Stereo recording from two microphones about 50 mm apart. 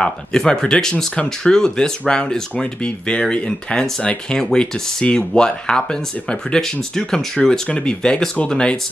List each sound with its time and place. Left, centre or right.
0.0 s speech: centre
4.4 s speech: centre